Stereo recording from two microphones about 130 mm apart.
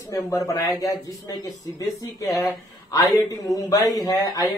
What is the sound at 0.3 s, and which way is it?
Speech, 25° left (ahead or behind).